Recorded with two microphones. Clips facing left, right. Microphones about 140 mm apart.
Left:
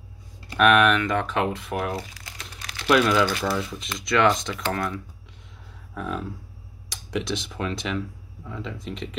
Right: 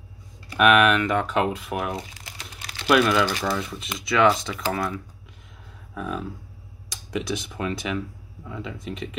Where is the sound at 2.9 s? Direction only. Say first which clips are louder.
Even; centre (ahead or behind).